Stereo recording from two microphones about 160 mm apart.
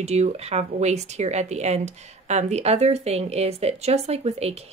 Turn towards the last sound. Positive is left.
turn(degrees=-40)  # may be behind; listen again after turning